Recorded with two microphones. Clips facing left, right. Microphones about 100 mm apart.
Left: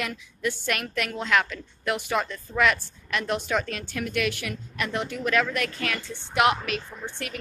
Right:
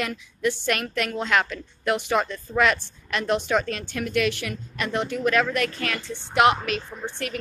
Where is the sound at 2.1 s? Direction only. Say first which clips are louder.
Right 3 dB; 20° right (ahead or behind).